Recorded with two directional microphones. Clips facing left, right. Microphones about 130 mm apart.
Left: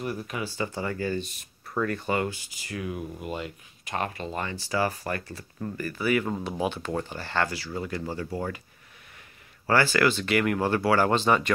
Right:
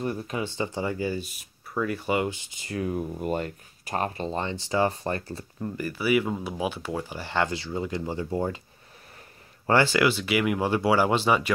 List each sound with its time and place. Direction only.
0.0 s speech: 25° right (ahead or behind)
5.8 s speech: 15° right (ahead or behind)
9.9 s speech: 10° right (ahead or behind)